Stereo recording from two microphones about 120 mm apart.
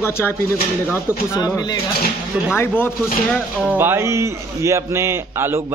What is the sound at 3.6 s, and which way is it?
A man's voice, 20° right (ahead or behind).